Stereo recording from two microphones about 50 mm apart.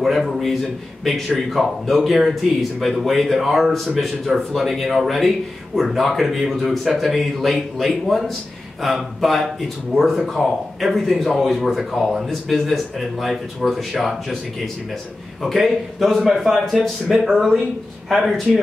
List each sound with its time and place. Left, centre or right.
0.0 s speech: centre
4.6 s speech: centre
15.4 s speech: centre